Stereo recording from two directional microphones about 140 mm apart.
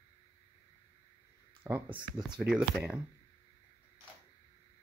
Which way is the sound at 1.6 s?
15° right (ahead or behind).